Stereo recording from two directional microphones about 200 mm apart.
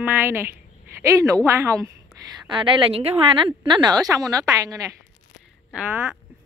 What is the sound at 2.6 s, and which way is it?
A woman's voice, 30° right (ahead or behind).